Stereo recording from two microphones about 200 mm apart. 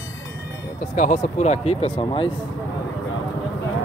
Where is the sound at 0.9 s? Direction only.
40° left (ahead or behind).